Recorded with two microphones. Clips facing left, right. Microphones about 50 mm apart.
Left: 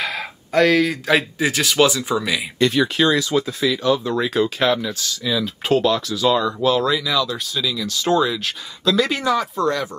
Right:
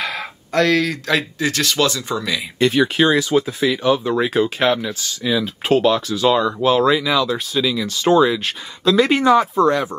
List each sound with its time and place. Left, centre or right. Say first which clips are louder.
0.0 s speech: even; centre
2.6 s speech: right 2 dB; centre